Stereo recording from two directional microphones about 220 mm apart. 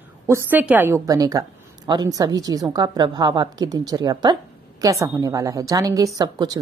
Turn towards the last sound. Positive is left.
turn(degrees=-20)  # may be behind; listen again after turning